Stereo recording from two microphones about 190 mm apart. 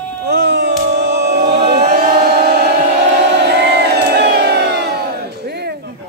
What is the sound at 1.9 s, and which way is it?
Chant, 55° right (ahead or behind).